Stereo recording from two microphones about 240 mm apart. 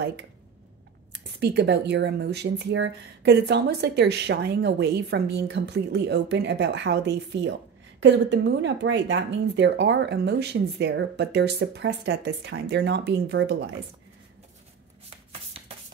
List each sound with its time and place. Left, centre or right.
1.4 s speech: right